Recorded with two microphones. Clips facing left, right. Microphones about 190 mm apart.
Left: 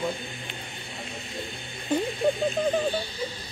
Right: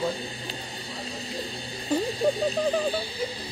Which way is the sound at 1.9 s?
35° right (ahead or behind).